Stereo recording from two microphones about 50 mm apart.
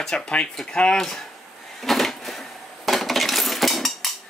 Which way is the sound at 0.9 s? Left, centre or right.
Centre.